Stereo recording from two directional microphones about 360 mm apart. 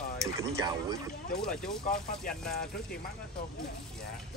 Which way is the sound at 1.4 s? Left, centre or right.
Centre.